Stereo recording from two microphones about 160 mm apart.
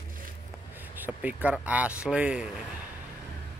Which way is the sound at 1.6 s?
10° right (ahead or behind).